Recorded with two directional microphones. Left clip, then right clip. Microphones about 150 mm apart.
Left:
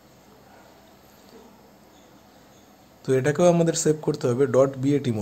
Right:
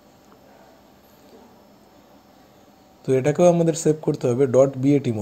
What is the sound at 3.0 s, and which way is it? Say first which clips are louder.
Speech: right 3 dB; 5° right (ahead or behind).